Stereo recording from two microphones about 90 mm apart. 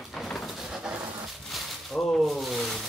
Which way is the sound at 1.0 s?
45° right (ahead or behind).